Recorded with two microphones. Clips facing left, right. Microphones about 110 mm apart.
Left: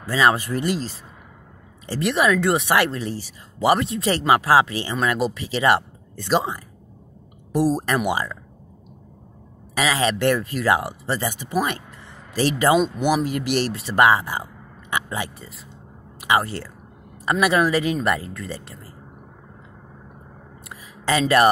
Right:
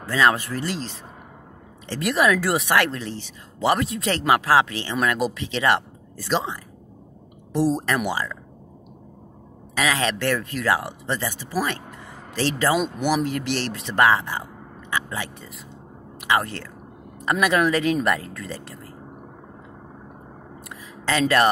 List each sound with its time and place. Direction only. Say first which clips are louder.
0.1 s speech: left 1 dB; 5° left (ahead or behind)
2.0 s speech: left 1 dB; centre (ahead or behind)
2.7 s speech: left 1 dB; 10° left (ahead or behind)
7.7 s speech: left 2 dB; 15° left (ahead or behind)
9.8 s speech: left 2 dB; 5° left (ahead or behind)
16.3 s speech: left 2 dB; 5° left (ahead or behind)
21.0 s speech: left 2 dB; 10° left (ahead or behind)